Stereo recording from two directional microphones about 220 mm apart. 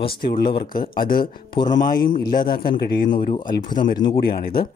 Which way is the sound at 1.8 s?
40° left (ahead or behind).